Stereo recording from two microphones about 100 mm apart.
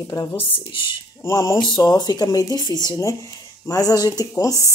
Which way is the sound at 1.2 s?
35° left (ahead or behind).